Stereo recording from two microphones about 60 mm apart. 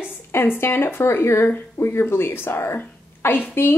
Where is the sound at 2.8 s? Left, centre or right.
Left.